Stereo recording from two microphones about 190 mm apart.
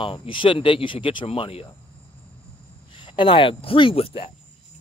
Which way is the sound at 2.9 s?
25° left (ahead or behind).